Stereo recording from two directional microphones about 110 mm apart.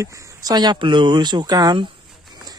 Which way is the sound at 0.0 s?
30° right (ahead or behind).